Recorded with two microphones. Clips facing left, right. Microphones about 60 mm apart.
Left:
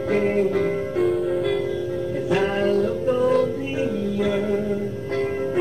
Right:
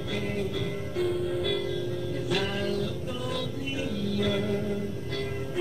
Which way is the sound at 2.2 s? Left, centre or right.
Left.